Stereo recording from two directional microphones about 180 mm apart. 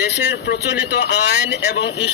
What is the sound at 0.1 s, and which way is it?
Speech, 70° left (ahead or behind).